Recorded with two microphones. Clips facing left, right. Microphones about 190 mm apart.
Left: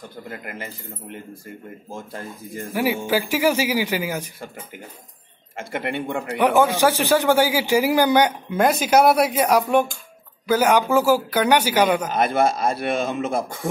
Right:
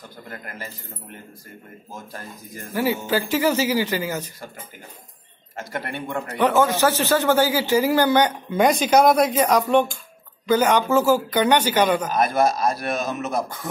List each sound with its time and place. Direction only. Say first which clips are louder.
0.2 s a man's voice: left 2 dB; 10° left (ahead or behind)
2.7 s a man's voice: left 1 dB; 10° left (ahead or behind)
5.7 s a man's voice: left 4 dB; 20° left (ahead or behind)
12.1 s speech: even; 30° left (ahead or behind)